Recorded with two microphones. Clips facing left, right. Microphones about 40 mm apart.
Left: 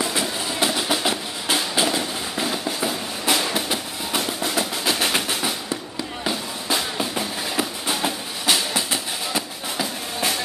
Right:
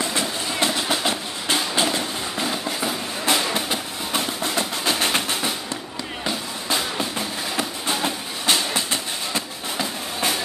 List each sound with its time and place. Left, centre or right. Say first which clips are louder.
0.0 s train: even; centre
6.2 s music: left 1 dB; centre